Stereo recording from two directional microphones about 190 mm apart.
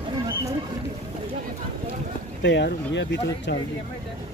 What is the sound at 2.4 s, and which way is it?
Speech, 65° left (ahead or behind).